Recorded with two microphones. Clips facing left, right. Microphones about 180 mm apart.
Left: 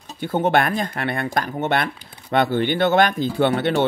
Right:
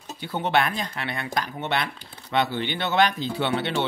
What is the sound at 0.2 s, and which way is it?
Speech, 50° left (ahead or behind).